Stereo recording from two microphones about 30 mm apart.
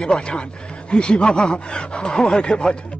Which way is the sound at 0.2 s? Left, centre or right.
Left.